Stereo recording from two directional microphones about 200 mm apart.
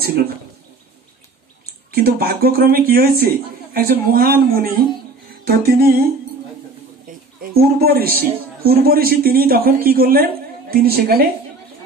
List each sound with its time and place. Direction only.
1.9 s speech: 50° right (ahead or behind)
7.1 s a man's voice: 50° right (ahead or behind)